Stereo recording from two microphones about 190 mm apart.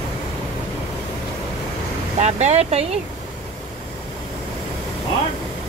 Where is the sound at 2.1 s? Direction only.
35° right (ahead or behind).